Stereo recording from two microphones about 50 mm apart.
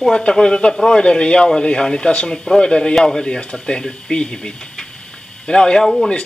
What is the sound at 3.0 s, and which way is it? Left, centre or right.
Speech, centre.